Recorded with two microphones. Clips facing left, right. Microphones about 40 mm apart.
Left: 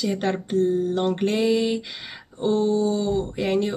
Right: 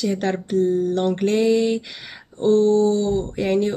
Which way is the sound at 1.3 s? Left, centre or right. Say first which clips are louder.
Right 5 dB; centre.